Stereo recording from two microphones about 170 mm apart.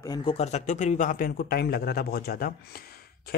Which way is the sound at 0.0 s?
25° left (ahead or behind).